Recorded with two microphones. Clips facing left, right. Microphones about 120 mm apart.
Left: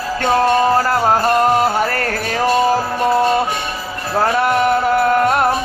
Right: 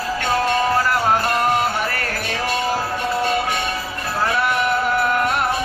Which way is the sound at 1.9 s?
40° left (ahead or behind).